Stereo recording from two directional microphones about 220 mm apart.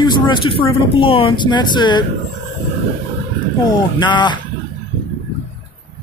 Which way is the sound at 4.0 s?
20° left (ahead or behind).